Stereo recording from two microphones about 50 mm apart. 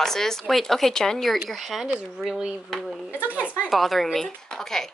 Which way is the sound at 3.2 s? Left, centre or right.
Right.